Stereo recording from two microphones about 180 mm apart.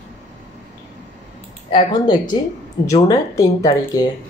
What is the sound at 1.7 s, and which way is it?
Speech, 25° left (ahead or behind).